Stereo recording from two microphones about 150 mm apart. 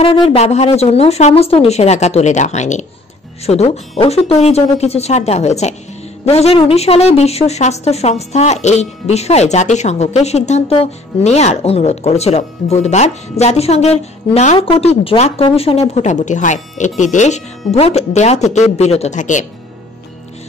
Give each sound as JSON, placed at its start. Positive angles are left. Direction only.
{"t": 0.0, "sound": "a woman's voice", "side_deg": 40}